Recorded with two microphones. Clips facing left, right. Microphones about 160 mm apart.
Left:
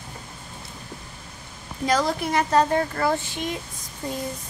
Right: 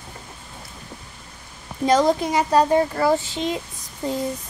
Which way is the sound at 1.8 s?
20° right (ahead or behind).